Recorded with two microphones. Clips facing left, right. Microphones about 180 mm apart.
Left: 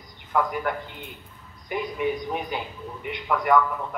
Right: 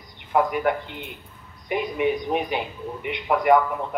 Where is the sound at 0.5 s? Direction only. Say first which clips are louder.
Right 5 dB; 70° right (ahead or behind).